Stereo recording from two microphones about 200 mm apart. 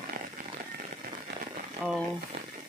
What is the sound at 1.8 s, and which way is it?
Speech, 5° right (ahead or behind).